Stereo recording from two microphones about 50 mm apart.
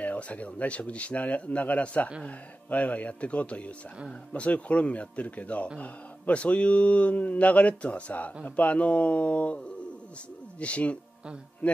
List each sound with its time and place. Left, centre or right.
0.0 s speech: left
10.6 s speech: left